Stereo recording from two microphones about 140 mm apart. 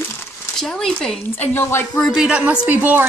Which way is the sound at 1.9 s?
Centre (ahead or behind).